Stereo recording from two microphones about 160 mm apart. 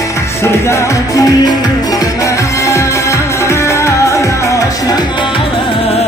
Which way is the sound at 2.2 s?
20° left (ahead or behind).